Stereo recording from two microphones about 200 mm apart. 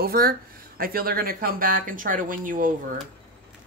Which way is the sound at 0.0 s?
50° right (ahead or behind).